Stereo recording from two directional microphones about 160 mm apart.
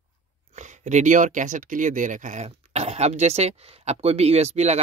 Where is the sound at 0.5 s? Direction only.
50° right (ahead or behind).